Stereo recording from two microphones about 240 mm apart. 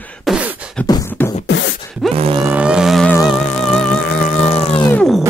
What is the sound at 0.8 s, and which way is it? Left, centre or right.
Beatboxing, centre.